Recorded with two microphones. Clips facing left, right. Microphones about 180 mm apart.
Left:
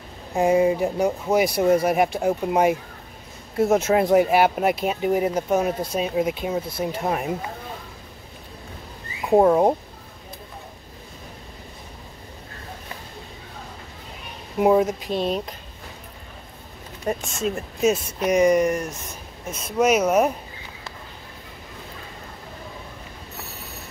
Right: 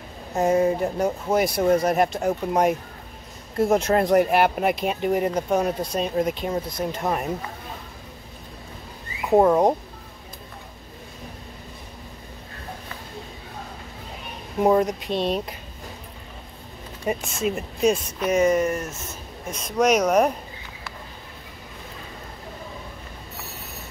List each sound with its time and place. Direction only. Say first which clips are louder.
0.3 s speech: left 2 dB; 10° left (ahead or behind)
9.3 s speech: left 1 dB; 5° left (ahead or behind)
14.6 s speech: left 1 dB; 5° left (ahead or behind)
17.0 s speech: even; centre (ahead or behind)